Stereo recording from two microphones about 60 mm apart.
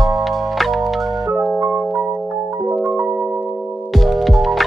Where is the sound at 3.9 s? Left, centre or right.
Centre.